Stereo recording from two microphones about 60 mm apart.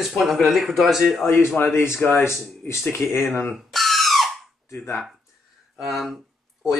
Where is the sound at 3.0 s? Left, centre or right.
Centre.